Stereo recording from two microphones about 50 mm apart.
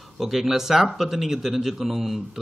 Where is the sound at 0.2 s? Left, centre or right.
Centre.